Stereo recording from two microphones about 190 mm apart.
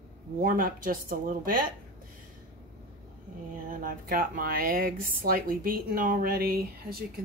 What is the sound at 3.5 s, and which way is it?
Speech, 45° right (ahead or behind).